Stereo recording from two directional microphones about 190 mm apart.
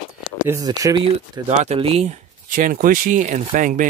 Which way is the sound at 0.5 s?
20° right (ahead or behind).